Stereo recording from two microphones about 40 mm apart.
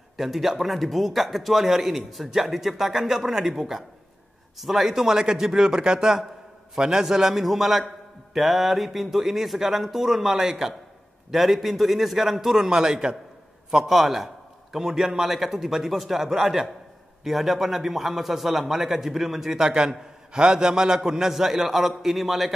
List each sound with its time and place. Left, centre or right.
0.2 s a man's voice: centre
13.8 s a man's voice: centre